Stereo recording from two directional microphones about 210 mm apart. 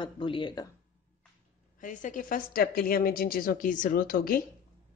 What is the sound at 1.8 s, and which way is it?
A woman's voice, 40° left (ahead or behind).